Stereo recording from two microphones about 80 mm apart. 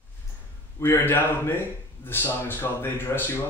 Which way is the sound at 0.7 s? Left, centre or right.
Left.